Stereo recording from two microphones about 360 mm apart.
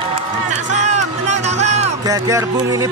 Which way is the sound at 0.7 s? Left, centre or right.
Centre.